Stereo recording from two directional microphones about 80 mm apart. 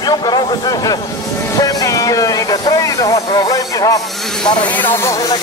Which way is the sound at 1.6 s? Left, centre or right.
Left.